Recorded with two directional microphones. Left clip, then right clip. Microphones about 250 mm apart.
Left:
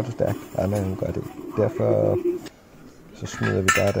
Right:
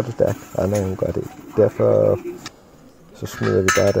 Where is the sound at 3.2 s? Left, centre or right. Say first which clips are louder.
Right 3 dB; centre.